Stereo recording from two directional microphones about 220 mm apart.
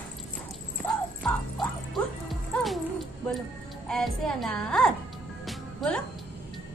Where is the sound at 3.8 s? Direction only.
Centre (ahead or behind).